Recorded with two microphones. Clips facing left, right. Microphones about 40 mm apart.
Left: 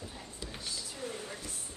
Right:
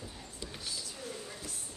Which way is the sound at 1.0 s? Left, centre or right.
Left.